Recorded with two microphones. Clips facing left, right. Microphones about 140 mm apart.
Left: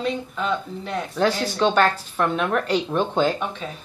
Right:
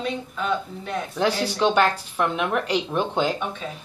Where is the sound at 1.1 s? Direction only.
15° right (ahead or behind).